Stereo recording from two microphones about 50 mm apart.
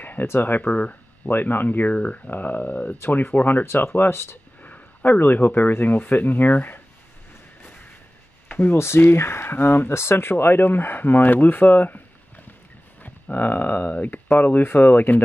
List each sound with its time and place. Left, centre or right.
0.0 s a sound: left
0.3 s speech: left
1.3 s speech: left
2.3 s speech: left
3.1 s speech: left
3.6 s speech: left
4.6 s speech: left
8.5 s a sound: left
8.7 s speech: left
13.0 s speech: left